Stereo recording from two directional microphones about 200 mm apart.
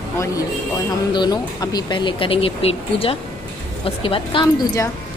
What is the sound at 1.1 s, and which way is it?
Speech, 20° left (ahead or behind).